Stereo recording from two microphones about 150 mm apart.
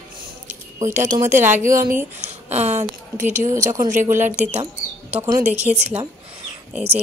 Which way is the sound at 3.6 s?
20° right (ahead or behind).